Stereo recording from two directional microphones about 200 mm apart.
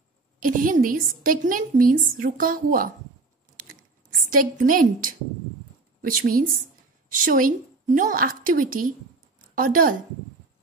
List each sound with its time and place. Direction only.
0.4 s a woman's voice: 45° right (ahead or behind)
4.1 s a woman's voice: 45° right (ahead or behind)